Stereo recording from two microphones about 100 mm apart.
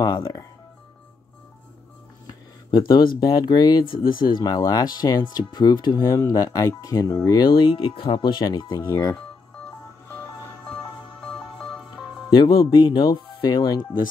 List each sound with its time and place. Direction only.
0.0 s music: 40° left (ahead or behind)
2.2 s speech: 40° left (ahead or behind)
7.4 s speech: 55° left (ahead or behind)
8.5 s speech: 35° left (ahead or behind)
10.0 s music: 25° left (ahead or behind)
10.6 s music: 5° left (ahead or behind)
12.4 s speech: 45° left (ahead or behind)